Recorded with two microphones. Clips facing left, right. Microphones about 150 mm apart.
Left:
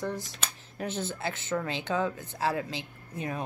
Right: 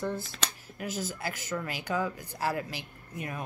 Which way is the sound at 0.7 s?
30° left (ahead or behind).